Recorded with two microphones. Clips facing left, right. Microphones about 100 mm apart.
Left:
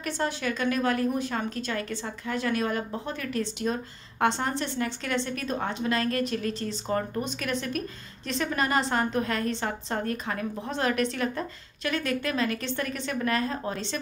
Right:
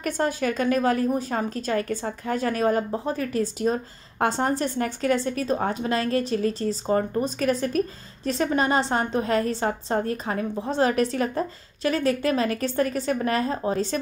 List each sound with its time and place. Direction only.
0.0 s a woman's voice: 45° right (ahead or behind)